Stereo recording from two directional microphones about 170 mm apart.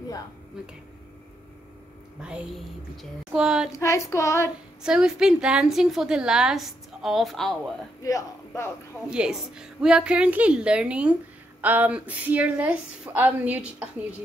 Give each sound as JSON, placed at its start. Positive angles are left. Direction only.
{"t": 3.3, "sound": "a woman's voice", "side_deg": -5}
{"t": 3.7, "sound": "child singing", "side_deg": 20}
{"t": 4.8, "sound": "a woman's voice", "side_deg": -5}
{"t": 8.0, "sound": "speech", "side_deg": 20}
{"t": 9.1, "sound": "a woman's voice", "side_deg": -5}